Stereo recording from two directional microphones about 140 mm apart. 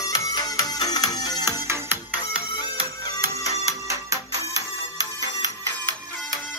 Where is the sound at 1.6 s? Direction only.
20° right (ahead or behind).